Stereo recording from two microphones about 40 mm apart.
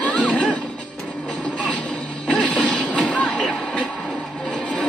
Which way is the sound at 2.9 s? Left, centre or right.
Left.